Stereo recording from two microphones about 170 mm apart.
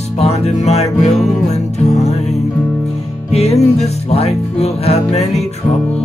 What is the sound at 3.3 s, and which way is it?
Music, 40° left (ahead or behind).